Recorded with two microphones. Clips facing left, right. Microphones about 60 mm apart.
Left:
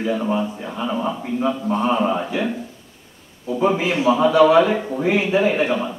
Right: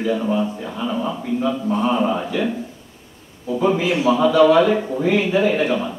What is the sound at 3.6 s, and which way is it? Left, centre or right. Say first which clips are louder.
A man's voice: even; centre.